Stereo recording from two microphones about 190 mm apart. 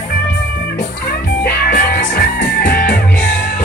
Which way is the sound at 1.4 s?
50° left (ahead or behind).